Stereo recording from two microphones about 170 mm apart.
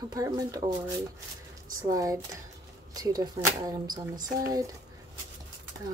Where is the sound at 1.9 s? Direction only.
20° right (ahead or behind).